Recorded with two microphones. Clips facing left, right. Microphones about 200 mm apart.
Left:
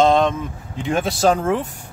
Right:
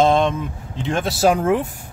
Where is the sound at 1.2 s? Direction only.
10° right (ahead or behind).